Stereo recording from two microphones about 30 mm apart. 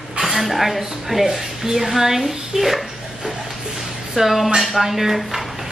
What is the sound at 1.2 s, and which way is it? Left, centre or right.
Speech, centre.